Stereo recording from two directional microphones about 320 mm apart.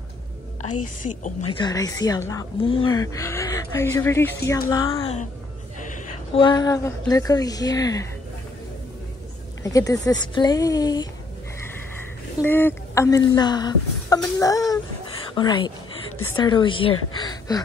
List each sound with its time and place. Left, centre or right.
0.6 s a woman's voice: left
1.2 s a woman's voice: centre
9.6 s speech: centre
12.4 s speech: centre
16.1 s a sound: left
16.3 s speech: centre